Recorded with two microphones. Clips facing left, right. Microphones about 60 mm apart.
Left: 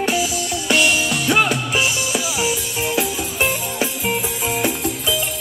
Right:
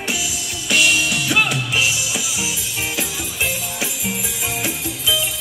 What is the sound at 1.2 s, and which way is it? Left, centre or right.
Music, left.